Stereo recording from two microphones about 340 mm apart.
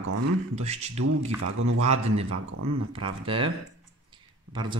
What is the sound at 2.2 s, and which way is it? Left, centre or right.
Speech, right.